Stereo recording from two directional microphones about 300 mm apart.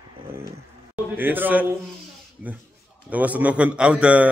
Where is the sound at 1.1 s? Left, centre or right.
Centre.